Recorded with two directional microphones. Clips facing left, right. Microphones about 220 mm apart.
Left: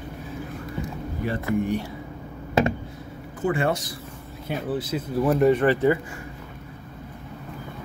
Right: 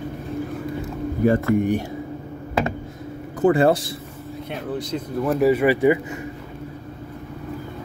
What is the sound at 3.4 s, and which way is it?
Speech, 35° right (ahead or behind).